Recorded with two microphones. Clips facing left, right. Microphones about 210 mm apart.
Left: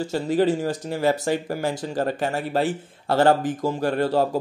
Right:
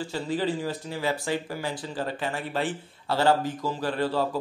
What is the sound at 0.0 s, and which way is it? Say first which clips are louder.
Speech: left 7 dB; 45° left (ahead or behind).